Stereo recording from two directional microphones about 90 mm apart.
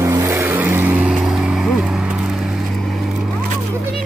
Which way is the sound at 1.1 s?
5° right (ahead or behind).